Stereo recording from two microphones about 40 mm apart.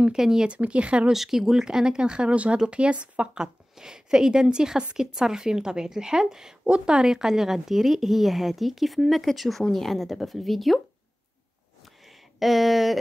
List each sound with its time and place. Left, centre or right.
0.1 s speech: centre
0.5 s speech: right
1.1 s speech: centre; by 3.3 s right
3.3 s speech: centre
11.8 s a sound: centre